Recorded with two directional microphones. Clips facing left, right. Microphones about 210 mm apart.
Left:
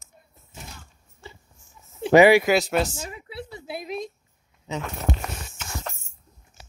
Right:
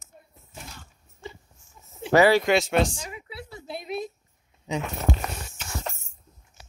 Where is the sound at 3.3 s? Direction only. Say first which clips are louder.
Left 4 dB; 20° left (ahead or behind).